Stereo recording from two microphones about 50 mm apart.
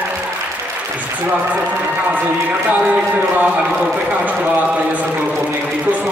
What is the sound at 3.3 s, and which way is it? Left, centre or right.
Speech, right.